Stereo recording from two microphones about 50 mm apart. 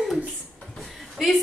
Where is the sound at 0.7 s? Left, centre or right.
Centre.